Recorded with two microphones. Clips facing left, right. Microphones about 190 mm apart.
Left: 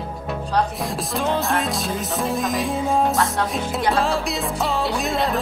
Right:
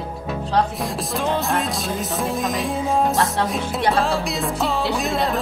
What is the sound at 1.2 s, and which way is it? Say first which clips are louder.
Speech: even; centre (ahead or behind).